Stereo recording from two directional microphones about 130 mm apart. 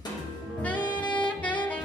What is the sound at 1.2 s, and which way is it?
Saxophone, 10° left (ahead or behind).